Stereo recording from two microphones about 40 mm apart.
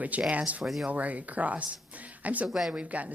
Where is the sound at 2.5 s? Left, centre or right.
Centre.